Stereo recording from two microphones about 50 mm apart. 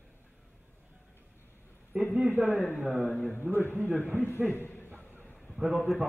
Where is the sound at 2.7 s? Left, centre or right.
Centre.